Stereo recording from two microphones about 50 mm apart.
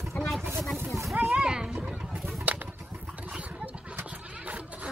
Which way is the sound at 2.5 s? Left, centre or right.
Right.